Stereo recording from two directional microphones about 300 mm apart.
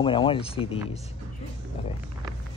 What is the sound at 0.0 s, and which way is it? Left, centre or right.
Speech, centre.